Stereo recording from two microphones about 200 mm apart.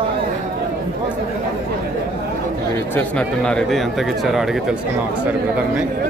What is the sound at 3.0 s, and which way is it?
Speech, 5° left (ahead or behind).